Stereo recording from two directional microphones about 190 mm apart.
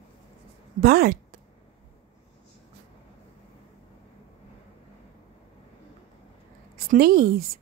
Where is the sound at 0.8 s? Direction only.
55° right (ahead or behind).